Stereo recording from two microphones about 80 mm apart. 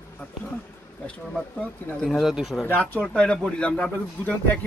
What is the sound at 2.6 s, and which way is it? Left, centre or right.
Speech, left.